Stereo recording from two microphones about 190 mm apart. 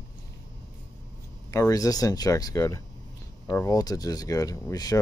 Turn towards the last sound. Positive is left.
turn(degrees=20)  # may be behind; listen again after turning